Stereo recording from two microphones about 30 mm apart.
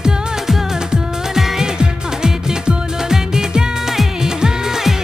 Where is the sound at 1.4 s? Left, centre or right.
Centre.